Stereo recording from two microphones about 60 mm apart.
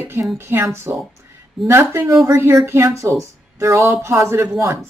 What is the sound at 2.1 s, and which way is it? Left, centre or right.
Speech, right.